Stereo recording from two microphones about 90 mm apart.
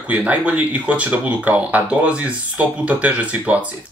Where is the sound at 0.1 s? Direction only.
15° right (ahead or behind).